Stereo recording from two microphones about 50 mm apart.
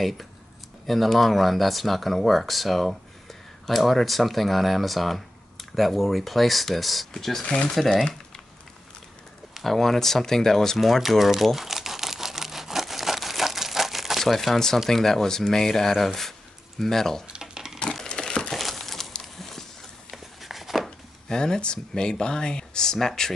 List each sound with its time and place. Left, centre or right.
0.8 s speech: centre
7.4 s speech: left
7.7 s speech: centre
9.5 s speech: centre
10.8 s crumpling: centre
14.9 s speech: centre
17.3 s a sound: centre
18.0 s crumpling: centre
18.5 s crumpling: centre
19.3 s a sound: centre
21.3 s speech: centre